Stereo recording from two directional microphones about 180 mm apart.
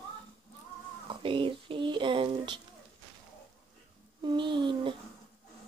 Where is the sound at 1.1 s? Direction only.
30° right (ahead or behind).